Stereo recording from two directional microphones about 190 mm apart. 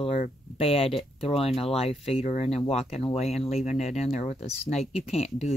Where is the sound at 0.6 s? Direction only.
30° left (ahead or behind).